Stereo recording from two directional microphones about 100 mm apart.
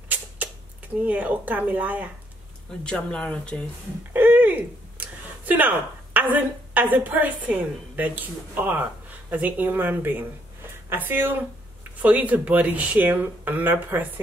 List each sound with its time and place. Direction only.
1.0 s speech: 15° right (ahead or behind)
2.8 s speech: 10° left (ahead or behind)
4.1 s a woman's voice: 20° right (ahead or behind)